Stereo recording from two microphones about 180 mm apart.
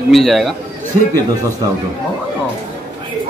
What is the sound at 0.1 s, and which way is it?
Speech, centre (ahead or behind).